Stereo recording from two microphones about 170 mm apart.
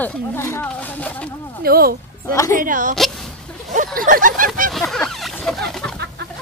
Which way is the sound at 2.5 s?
50° right (ahead or behind).